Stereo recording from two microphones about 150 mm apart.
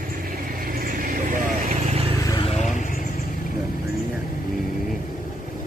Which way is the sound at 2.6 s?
55° left (ahead or behind).